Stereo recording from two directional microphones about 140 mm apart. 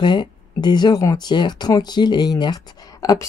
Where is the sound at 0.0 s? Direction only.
30° left (ahead or behind).